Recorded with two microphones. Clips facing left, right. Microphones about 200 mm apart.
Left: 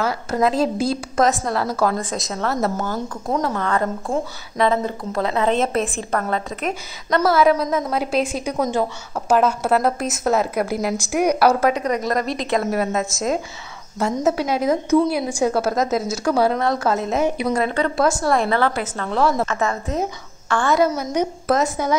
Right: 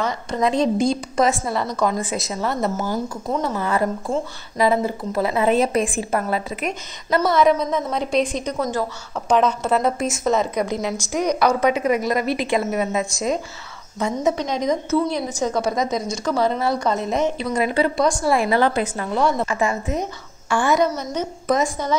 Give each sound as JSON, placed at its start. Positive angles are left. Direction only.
{"t": 0.0, "sound": "a woman's voice", "side_deg": 5}
{"t": 11.8, "sound": "a woman's voice", "side_deg": -5}
{"t": 16.5, "sound": "a woman's voice", "side_deg": 0}
{"t": 17.5, "sound": "speech", "side_deg": -10}
{"t": 17.9, "sound": "a woman's voice", "side_deg": 5}
{"t": 18.6, "sound": "speech", "side_deg": -15}
{"t": 19.0, "sound": "a woman's voice", "side_deg": 0}
{"t": 19.4, "sound": "a woman's voice", "side_deg": -10}
{"t": 20.7, "sound": "a woman's voice", "side_deg": 5}